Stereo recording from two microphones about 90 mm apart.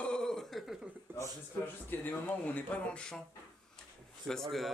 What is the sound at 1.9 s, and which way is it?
Speech, 20° left (ahead or behind).